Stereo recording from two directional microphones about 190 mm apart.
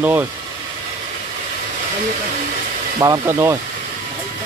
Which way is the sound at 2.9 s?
15° right (ahead or behind).